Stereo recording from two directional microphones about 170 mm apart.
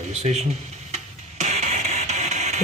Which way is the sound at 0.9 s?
40° right (ahead or behind).